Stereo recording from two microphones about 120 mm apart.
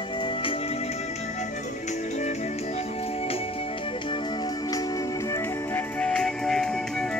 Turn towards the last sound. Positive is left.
turn(degrees=5)  # may be behind; listen again after turning